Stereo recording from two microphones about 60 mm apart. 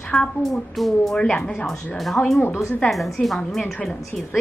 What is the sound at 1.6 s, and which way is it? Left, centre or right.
Speech, centre.